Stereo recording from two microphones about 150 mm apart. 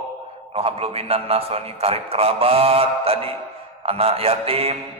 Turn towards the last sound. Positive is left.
turn(degrees=-40)  # may be behind; listen again after turning